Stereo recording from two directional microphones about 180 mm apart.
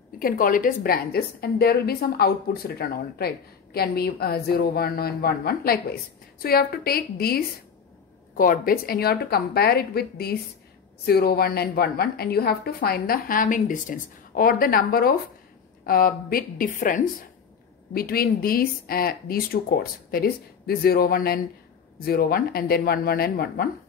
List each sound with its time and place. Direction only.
0.2 s a woman's voice: 50° left (ahead or behind)